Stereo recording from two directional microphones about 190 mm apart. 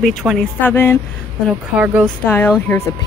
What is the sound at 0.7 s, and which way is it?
Speech, 15° left (ahead or behind).